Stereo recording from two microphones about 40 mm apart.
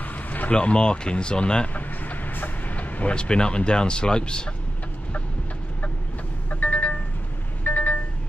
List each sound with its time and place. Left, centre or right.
0.0 s a sound: left
0.6 s speech: left
1.7 s vehicle: left
3.2 s speech: left
6.5 s vehicle: left